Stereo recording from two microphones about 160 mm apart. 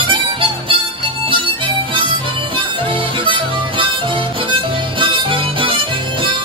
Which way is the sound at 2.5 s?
30° right (ahead or behind).